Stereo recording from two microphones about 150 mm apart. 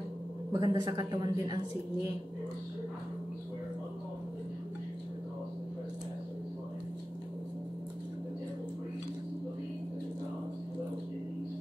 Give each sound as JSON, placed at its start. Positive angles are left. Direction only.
{"t": 0.5, "sound": "a woman's voice", "side_deg": -30}